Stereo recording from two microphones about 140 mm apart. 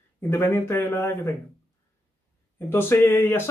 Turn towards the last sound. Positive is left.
turn(degrees=15)  # may be behind; listen again after turning